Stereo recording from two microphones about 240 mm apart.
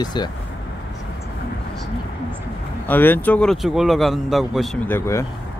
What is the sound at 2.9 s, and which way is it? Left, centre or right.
Speech, centre.